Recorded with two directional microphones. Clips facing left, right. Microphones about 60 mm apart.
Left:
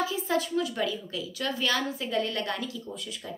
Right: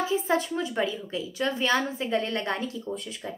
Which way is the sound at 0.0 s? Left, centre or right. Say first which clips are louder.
Right 3 dB; right.